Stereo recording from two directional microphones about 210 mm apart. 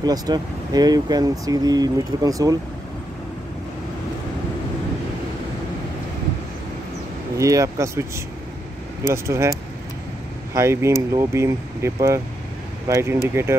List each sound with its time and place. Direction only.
0.0 s speech: 20° right (ahead or behind)
7.3 s speech: 15° right (ahead or behind)
9.1 s speech: 15° right (ahead or behind)